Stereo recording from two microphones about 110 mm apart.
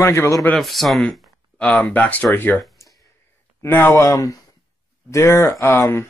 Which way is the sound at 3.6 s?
20° left (ahead or behind).